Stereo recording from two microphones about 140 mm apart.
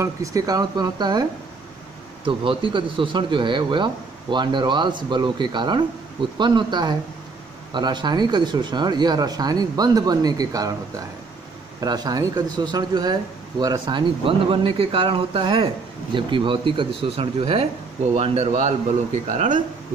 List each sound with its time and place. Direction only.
0.0 s speech: 25° right (ahead or behind)
2.2 s speech: 35° right (ahead or behind)
11.8 s a man's voice: 30° right (ahead or behind); by 19.6 s 60° right (ahead or behind)